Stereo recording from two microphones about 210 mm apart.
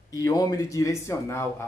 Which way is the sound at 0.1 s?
15° left (ahead or behind).